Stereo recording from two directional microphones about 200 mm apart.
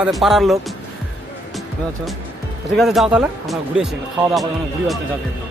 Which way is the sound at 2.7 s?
Centre (ahead or behind).